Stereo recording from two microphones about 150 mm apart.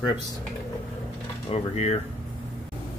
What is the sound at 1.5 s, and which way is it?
Speech, 45° left (ahead or behind).